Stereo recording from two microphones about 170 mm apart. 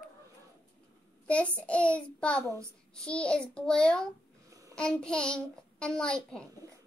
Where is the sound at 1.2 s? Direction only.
5° left (ahead or behind).